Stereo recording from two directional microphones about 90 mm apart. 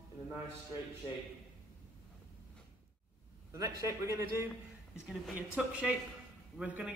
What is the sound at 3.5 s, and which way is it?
Speech, 40° right (ahead or behind).